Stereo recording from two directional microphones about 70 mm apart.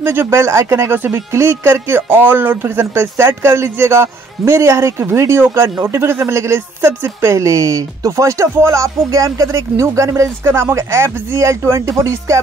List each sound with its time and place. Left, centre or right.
0.0 s speech: right